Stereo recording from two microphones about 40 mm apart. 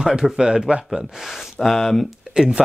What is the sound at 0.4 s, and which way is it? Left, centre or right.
Speech, right.